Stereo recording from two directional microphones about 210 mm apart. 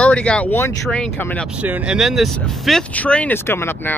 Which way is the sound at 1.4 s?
5° right (ahead or behind).